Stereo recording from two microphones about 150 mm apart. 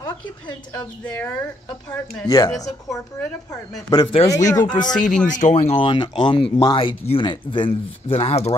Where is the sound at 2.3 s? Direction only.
25° left (ahead or behind).